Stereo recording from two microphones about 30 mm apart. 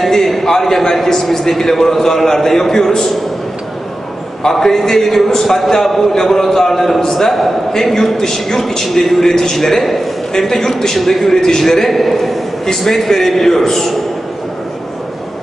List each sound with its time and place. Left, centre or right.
0.0 s a sound: centre
0.5 s a man's voice: centre
4.4 s a man's voice: centre